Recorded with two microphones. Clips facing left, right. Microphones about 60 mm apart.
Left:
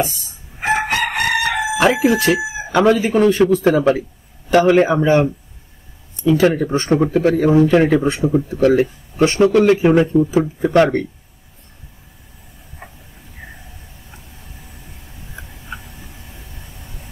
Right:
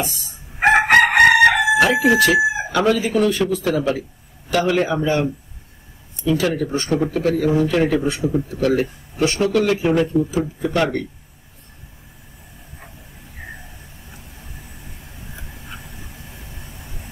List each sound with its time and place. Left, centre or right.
0.6 s chicken: right
2.1 s speech: left
8.0 s speech: left